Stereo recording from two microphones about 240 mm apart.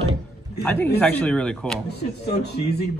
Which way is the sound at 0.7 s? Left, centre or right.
Centre.